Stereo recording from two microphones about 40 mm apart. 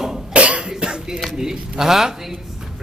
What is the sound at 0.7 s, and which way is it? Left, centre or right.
Cough, right.